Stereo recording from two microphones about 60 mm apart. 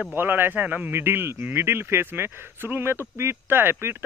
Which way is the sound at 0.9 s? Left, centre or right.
Right.